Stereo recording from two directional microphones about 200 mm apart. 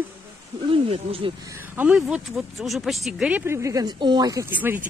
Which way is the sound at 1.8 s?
5° right (ahead or behind).